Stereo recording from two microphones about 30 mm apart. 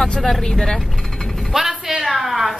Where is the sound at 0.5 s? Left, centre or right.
Left.